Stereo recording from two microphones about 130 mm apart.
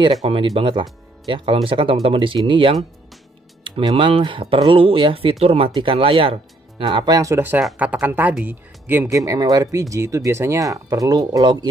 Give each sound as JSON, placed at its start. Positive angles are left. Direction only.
{"t": 0.2, "sound": "speech", "side_deg": -45}
{"t": 3.9, "sound": "speech", "side_deg": -45}
{"t": 6.9, "sound": "speech", "side_deg": -30}